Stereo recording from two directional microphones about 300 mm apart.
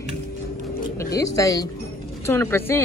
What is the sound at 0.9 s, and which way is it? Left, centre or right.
Speech, centre.